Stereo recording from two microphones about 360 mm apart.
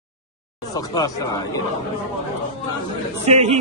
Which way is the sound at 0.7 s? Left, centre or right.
Centre.